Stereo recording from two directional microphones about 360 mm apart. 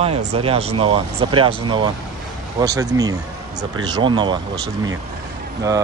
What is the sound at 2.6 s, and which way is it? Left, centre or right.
Speech, centre.